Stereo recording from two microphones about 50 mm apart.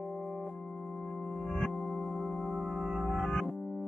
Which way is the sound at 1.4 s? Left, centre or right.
Centre.